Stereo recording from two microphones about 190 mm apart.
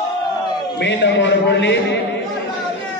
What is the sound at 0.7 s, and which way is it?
A man's voice, 65° left (ahead or behind).